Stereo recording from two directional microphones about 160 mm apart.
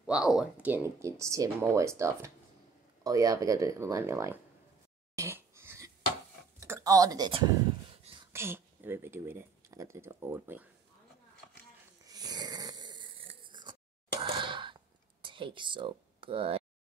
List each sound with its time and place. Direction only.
0.0 s speech: 5° right (ahead or behind)
5.1 s wheeze: 20° right (ahead or behind)
6.6 s speech: 20° right (ahead or behind)
8.3 s speech: 15° right (ahead or behind)
12.1 s snoring: 25° right (ahead or behind)
14.2 s coin: 30° right (ahead or behind)
15.2 s speech: 30° right (ahead or behind)